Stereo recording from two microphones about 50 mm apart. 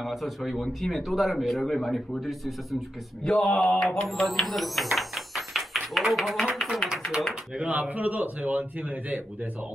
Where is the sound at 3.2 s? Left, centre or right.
Centre.